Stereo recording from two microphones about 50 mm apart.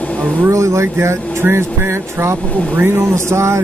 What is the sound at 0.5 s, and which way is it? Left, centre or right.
Speech, right.